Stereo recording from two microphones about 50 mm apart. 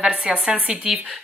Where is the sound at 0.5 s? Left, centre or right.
Right.